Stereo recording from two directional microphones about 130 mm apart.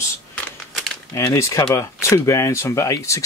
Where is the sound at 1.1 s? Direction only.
20° left (ahead or behind).